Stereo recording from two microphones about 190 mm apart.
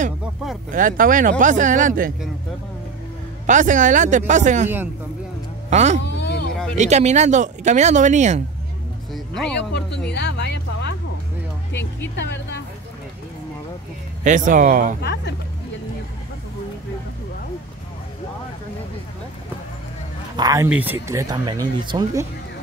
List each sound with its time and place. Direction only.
0.7 s speech: 45° right (ahead or behind)
3.4 s speech: 40° right (ahead or behind)
5.7 s speech: 35° right (ahead or behind)
6.0 s a sound: 65° left (ahead or behind)
6.8 s speech: 35° right (ahead or behind)
9.1 s speech: 5° left (ahead or behind)
9.6 s speech: 65° left (ahead or behind)
11.7 s speech: 10° left (ahead or behind)
14.2 s speech: 40° right (ahead or behind)
15.0 s speech: 60° left (ahead or behind)
20.3 s speech: 20° right (ahead or behind)